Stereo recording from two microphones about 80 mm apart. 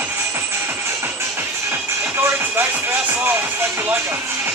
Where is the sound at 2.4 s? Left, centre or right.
Right.